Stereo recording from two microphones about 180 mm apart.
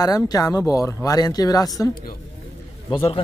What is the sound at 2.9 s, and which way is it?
Speech, 30° left (ahead or behind).